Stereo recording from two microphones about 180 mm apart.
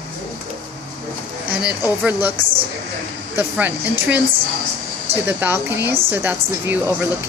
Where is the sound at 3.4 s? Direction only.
10° right (ahead or behind).